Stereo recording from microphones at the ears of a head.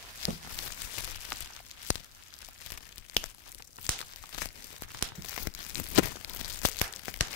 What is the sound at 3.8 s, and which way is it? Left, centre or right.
Crumpling, left.